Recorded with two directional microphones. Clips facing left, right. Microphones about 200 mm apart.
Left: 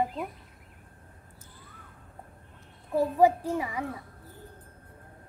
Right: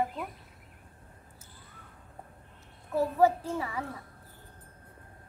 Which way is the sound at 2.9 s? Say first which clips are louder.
Left 2 dB; 15° left (ahead or behind).